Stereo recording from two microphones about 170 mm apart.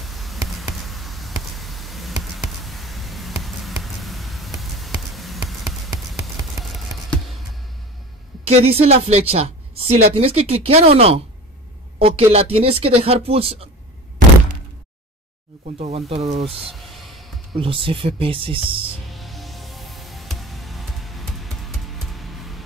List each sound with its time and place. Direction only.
0.0 s basketball bounce: centre (ahead or behind)
6.1 s a sound: centre (ahead or behind)
8.5 s a woman's voice: 35° right (ahead or behind)
15.6 s a woman's voice: 40° right (ahead or behind)
16.4 s music: centre (ahead or behind)
17.6 s a woman's voice: 30° right (ahead or behind)
19.0 s music: centre (ahead or behind)